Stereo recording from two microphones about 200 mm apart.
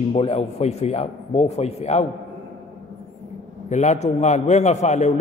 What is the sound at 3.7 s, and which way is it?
A man's voice, 35° left (ahead or behind).